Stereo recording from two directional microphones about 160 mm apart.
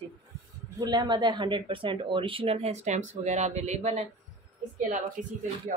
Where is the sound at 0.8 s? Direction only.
30° right (ahead or behind); by 4.0 s 45° right (ahead or behind).